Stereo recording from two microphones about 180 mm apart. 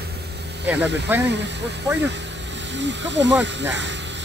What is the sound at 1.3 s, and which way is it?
Speech, 70° right (ahead or behind).